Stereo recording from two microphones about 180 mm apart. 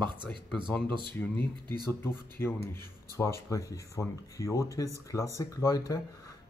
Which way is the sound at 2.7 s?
15° left (ahead or behind).